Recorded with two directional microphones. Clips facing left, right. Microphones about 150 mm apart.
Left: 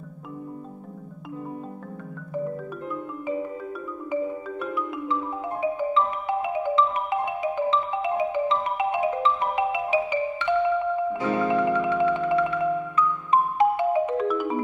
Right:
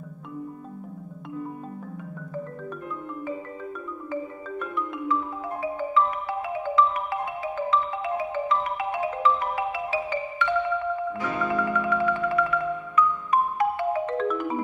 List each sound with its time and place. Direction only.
4.1 s music: 10° left (ahead or behind)
5.6 s marimba: 20° left (ahead or behind)
11.1 s music: 30° left (ahead or behind); by 14.6 s 5° left (ahead or behind)